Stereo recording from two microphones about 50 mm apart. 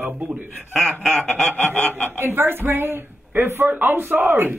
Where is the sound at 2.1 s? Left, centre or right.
Right.